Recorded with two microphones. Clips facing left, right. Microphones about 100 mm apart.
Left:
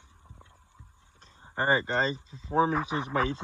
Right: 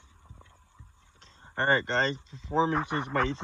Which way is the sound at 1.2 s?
10° left (ahead or behind).